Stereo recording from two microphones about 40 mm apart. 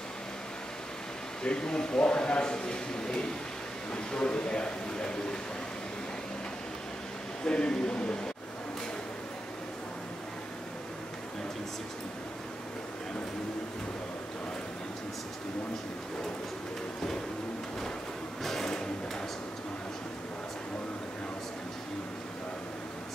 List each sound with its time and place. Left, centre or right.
1.4 s a man's voice: left
7.4 s a man's voice: centre
18.4 s a sound: centre